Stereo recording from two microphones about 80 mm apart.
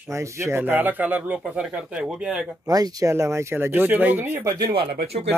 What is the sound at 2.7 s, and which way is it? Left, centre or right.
Speech, right.